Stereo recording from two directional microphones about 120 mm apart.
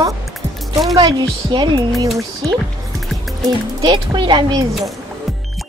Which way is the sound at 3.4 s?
35° right (ahead or behind).